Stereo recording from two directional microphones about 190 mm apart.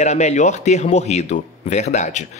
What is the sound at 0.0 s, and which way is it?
Speech, 35° left (ahead or behind).